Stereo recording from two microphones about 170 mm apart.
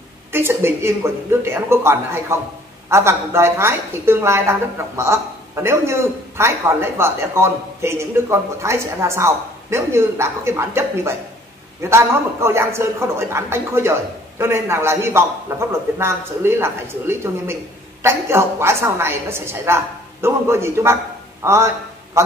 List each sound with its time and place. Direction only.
0.3 s a woman's voice: 15° right (ahead or behind)